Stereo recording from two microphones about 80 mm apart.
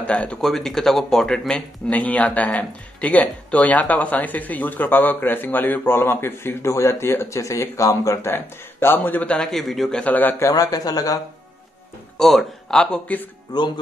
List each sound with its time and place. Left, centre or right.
0.0 s a man's voice: centre; by 8.2 s left
8.2 s speech: left
9.5 s speech: centre
9.9 s speech: centre
10.5 s speech: left
12.2 s speech: centre